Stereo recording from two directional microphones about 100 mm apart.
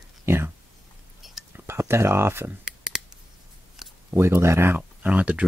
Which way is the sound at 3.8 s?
5° right (ahead or behind).